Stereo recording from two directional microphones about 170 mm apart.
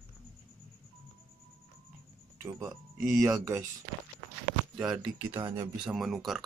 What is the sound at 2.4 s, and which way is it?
Speech, 20° right (ahead or behind).